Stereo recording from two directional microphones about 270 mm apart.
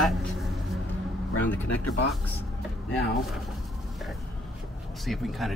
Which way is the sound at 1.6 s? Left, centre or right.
Left.